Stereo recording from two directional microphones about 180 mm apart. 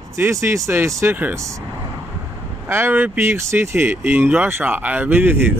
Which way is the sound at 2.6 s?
10° right (ahead or behind).